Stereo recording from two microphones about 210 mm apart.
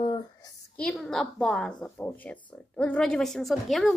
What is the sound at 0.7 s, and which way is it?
A woman's voice, centre (ahead or behind).